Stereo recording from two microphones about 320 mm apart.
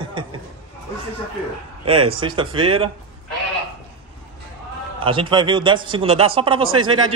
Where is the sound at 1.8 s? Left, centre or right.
Centre.